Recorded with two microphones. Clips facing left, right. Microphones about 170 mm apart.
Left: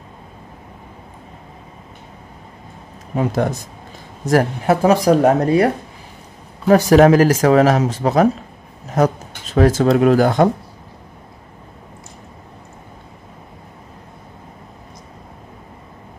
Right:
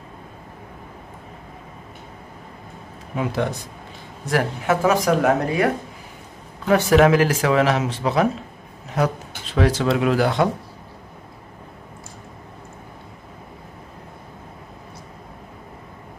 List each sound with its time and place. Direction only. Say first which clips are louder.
3.2 s a man's voice: left 5 dB; 40° left (ahead or behind)
6.7 s speech: left 5 dB; 40° left (ahead or behind)